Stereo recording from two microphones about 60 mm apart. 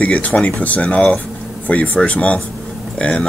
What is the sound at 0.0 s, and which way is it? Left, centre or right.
A man's voice, left.